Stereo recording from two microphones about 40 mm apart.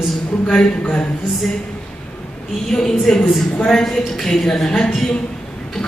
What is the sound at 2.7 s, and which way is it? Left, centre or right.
A woman's voice, centre.